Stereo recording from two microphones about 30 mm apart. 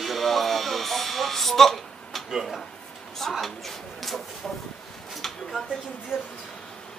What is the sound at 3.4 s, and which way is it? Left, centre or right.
Speech, centre.